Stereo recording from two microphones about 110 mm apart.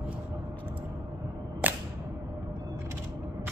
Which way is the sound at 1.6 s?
15° right (ahead or behind).